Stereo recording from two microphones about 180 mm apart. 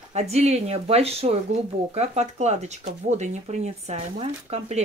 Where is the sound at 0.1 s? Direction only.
35° right (ahead or behind).